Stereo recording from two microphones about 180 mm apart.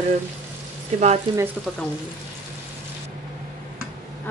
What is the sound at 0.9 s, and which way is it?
Speech, 40° right (ahead or behind).